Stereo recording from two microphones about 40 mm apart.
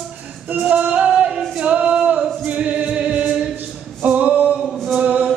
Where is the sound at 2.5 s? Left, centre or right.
Right.